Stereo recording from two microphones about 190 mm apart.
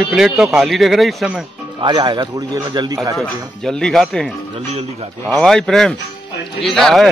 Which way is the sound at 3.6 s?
5° left (ahead or behind).